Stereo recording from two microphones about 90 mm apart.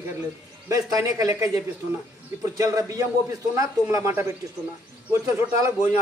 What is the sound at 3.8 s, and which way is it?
Speech, 30° right (ahead or behind).